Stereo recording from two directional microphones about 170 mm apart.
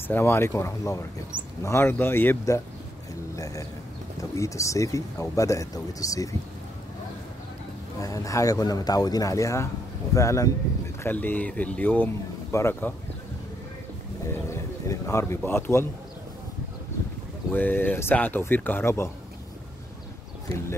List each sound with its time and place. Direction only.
0.1 s speech: 15° left (ahead or behind)
8.0 s speech: 20° left (ahead or behind)
14.2 s speech: 15° left (ahead or behind)
17.5 s speech: 10° left (ahead or behind)